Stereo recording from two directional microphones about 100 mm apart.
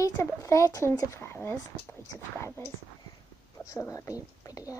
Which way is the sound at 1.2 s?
20° left (ahead or behind).